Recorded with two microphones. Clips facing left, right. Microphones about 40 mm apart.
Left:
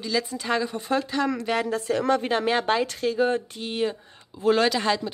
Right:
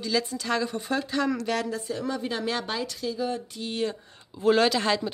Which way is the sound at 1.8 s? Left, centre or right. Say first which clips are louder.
Left 8 dB; left.